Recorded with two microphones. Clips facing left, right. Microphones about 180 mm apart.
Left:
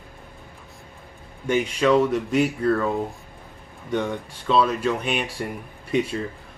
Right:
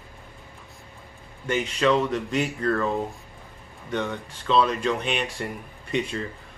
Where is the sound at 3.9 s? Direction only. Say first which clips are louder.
Left 3 dB; 10° left (ahead or behind).